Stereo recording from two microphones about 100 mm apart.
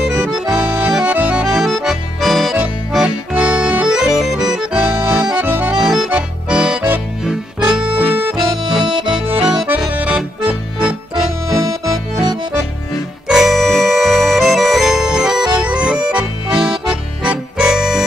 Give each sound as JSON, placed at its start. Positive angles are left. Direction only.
{"t": 0.2, "sound": "accordion", "side_deg": -5}
{"t": 9.4, "sound": "accordion", "side_deg": -5}
{"t": 11.5, "sound": "accordion", "side_deg": -35}
{"t": 13.3, "sound": "music", "side_deg": 0}